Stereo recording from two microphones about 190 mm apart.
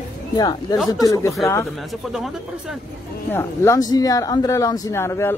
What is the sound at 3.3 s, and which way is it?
Speech, 15° left (ahead or behind).